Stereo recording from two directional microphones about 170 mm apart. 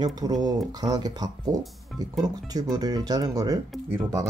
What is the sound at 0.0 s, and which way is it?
Speech, 25° right (ahead or behind).